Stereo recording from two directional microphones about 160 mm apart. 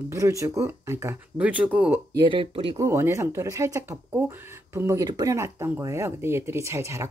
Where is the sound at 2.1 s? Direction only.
30° right (ahead or behind).